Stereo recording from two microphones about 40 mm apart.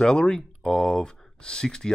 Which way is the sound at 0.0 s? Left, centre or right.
Centre.